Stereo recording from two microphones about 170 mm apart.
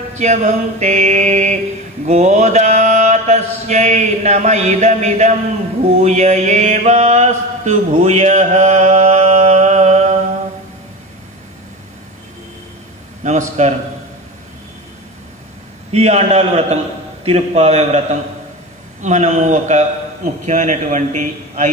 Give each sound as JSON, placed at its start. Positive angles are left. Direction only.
{"t": 0.1, "sound": "mantra", "side_deg": -45}
{"t": 13.2, "sound": "mantra", "side_deg": -45}
{"t": 15.9, "sound": "a man's voice", "side_deg": -40}
{"t": 18.9, "sound": "mantra", "side_deg": -45}